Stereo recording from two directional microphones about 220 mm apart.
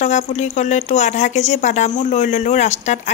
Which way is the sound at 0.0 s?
30° left (ahead or behind).